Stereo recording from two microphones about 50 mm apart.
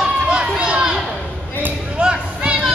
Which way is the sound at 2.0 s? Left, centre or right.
Right.